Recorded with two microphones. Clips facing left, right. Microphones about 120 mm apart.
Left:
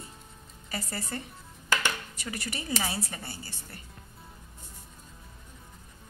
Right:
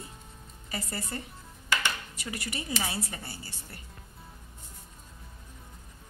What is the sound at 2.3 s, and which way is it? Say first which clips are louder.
A woman's voice: left 1 dB; 25° left (ahead or behind).